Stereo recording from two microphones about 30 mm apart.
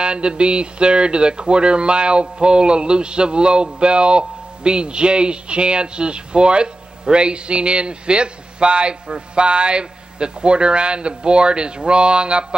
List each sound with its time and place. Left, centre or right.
0.0 s speech: right